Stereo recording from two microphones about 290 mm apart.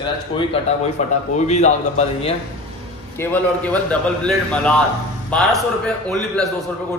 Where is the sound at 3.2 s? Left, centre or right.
Centre.